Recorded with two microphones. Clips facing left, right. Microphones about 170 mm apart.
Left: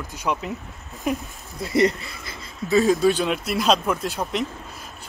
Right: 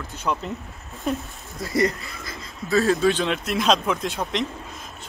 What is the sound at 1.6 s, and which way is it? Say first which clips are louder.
Speech: left 3 dB; 20° left (ahead or behind).